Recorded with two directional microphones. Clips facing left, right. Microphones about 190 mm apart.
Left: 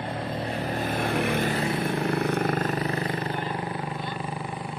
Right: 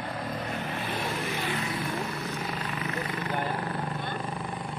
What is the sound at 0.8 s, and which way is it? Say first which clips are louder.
Vehicle: left 9 dB; 50° left (ahead or behind).